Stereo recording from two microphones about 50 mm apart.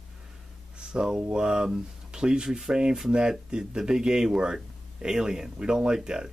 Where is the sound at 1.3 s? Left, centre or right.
Centre.